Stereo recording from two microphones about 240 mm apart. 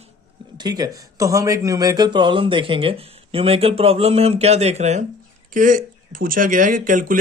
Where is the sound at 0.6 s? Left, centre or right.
Centre.